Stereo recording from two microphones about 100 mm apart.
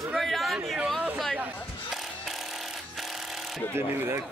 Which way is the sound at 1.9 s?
Centre (ahead or behind).